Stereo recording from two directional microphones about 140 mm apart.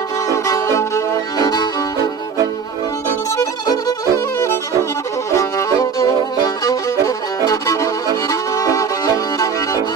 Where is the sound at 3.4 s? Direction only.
25° left (ahead or behind).